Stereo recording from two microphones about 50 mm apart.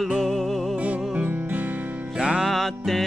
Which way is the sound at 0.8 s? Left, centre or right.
Right.